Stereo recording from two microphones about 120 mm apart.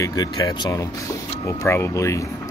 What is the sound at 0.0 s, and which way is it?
Speech, 35° left (ahead or behind).